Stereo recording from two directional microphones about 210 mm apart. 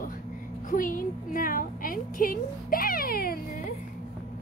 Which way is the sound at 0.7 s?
40° left (ahead or behind).